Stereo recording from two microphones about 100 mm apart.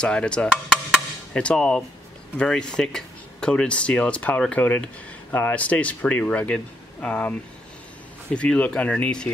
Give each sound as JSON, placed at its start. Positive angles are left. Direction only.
{"t": 0.0, "sound": "speech", "side_deg": 10}
{"t": 8.4, "sound": "speech", "side_deg": 15}